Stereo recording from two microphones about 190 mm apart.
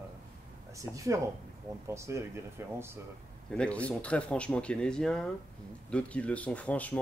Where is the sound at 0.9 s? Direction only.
15° right (ahead or behind).